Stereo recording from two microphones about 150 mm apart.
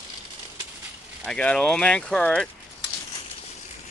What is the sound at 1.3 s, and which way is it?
Speech, 5° left (ahead or behind).